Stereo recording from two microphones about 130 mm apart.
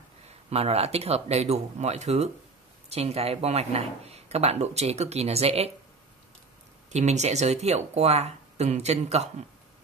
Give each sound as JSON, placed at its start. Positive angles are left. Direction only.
{"t": 0.5, "sound": "speech", "side_deg": -50}
{"t": 6.9, "sound": "speech", "side_deg": -60}